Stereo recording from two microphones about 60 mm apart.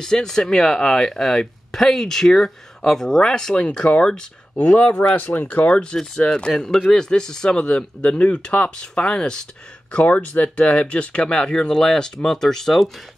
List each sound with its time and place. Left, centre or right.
0.0 s speech: centre
9.9 s speech: left; by 12.9 s centre